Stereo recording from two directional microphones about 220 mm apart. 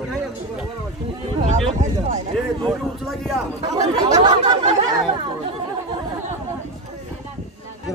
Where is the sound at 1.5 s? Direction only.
35° right (ahead or behind).